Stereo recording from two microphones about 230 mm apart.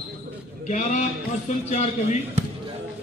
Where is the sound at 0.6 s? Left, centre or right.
Left.